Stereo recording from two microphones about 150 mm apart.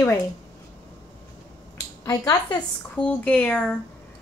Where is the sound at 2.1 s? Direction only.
25° left (ahead or behind).